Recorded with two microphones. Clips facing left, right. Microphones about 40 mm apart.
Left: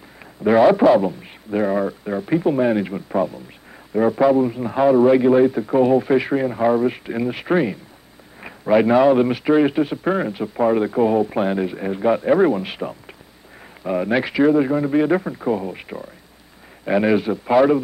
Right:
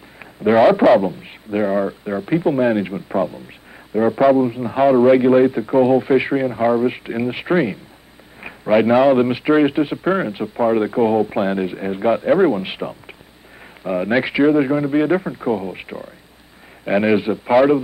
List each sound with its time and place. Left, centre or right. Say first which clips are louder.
0.5 s a man's voice: right 1 dB; right
4.7 s a man's voice: right 2 dB; right
14.0 s a man's voice: right 2 dB; centre